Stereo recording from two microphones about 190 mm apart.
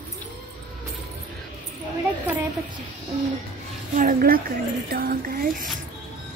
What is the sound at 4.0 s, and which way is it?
A woman's voice, 50° right (ahead or behind).